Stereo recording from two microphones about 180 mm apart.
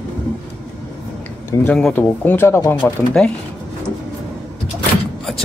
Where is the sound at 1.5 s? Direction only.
5° left (ahead or behind).